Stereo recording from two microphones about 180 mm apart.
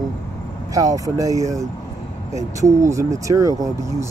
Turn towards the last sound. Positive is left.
turn(degrees=-20)  # may be behind; listen again after turning